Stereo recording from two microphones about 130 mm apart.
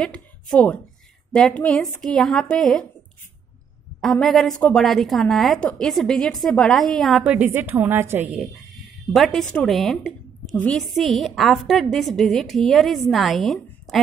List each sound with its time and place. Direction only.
0.0 s a woman's voice: 5° left (ahead or behind)
4.0 s a woman's voice: centre (ahead or behind)
7.2 s a woman's voice: 15° right (ahead or behind)
8.4 s a woman's voice: centre (ahead or behind)